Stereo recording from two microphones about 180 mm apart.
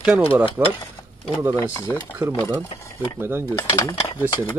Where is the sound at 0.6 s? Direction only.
20° right (ahead or behind).